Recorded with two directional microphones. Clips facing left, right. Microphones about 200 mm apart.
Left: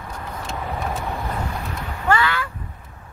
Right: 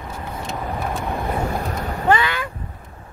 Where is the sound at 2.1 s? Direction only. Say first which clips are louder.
Right 1 dB; 20° right (ahead or behind).